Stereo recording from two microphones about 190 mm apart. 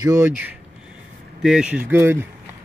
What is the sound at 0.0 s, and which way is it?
Speech, 15° right (ahead or behind).